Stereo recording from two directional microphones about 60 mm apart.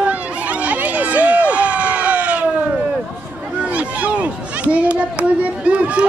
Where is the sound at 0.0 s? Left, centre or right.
Right.